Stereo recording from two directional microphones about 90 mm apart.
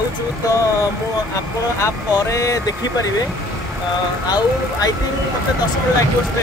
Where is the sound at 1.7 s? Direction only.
35° left (ahead or behind).